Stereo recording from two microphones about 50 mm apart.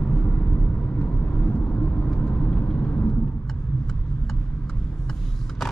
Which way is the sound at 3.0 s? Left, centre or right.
Centre.